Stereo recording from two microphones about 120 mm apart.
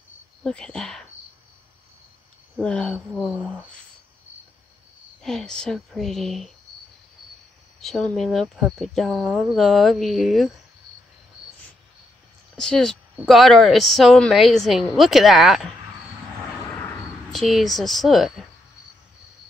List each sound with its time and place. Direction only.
0.4 s speech: 5° left (ahead or behind)
2.6 s speech: 10° left (ahead or behind)
5.2 s speech: 5° left (ahead or behind)
7.8 s speech: 5° left (ahead or behind)
12.5 s speech: 5° left (ahead or behind)
16.6 s vehicle: 20° left (ahead or behind)
17.3 s speech: centre (ahead or behind)